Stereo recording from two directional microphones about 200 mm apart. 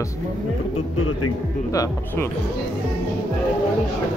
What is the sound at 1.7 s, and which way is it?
Speech, 15° left (ahead or behind).